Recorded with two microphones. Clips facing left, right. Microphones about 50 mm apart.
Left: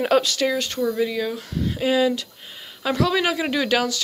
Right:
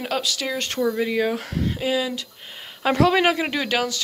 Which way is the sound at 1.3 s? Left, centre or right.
Right.